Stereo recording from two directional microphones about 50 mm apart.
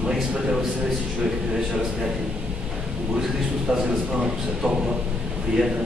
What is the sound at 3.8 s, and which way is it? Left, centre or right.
Speech, centre.